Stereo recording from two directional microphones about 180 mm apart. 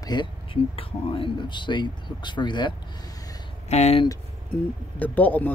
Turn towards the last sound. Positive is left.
turn(degrees=10)  # may be behind; listen again after turning